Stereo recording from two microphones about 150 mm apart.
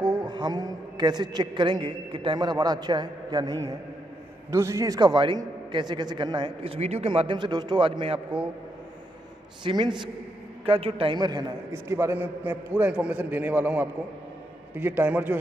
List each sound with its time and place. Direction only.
0.0 s a man's voice: 30° right (ahead or behind)
9.7 s a man's voice: 30° right (ahead or behind)
11.7 s a man's voice: 15° right (ahead or behind)